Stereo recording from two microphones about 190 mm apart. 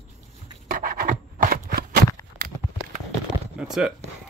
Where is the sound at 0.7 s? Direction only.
45° right (ahead or behind).